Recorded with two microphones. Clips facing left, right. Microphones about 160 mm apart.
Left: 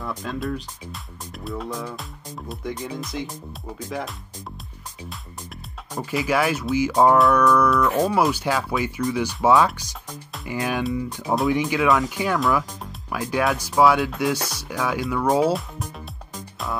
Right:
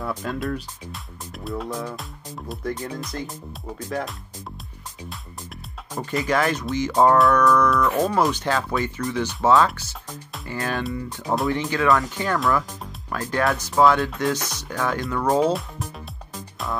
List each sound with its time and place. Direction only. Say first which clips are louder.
0.0 s speech: right 1 dB; 5° right (ahead or behind)
6.0 s speech: even; 10° left (ahead or behind)
11.2 s speech: left 2 dB; centre (ahead or behind)
16.3 s music: even; centre (ahead or behind)